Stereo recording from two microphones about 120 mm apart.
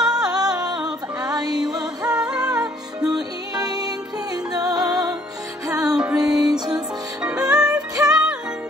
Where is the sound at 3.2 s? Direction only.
35° right (ahead or behind).